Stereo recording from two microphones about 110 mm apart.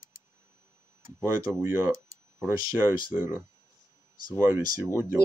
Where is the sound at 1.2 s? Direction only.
25° right (ahead or behind).